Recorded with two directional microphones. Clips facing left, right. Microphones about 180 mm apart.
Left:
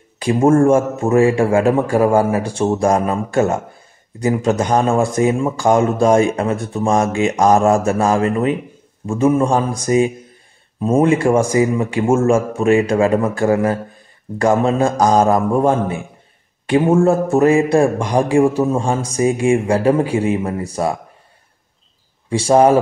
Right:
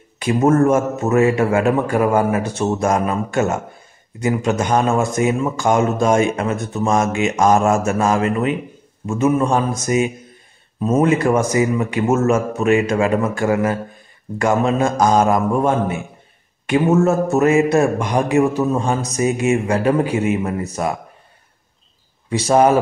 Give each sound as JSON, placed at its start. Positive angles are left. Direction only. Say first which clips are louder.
{"t": 0.2, "sound": "a man's voice", "louder": "left 2 dB", "side_deg": 30}
{"t": 22.3, "sound": "a man's voice", "louder": "left 2 dB", "side_deg": 30}